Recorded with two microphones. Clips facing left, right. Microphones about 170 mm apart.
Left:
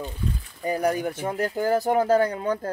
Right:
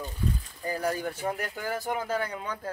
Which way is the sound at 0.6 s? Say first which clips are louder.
Left 7 dB; 20° left (ahead or behind).